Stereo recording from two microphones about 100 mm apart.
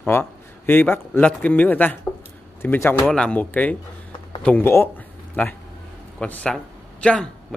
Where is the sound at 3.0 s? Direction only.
10° left (ahead or behind).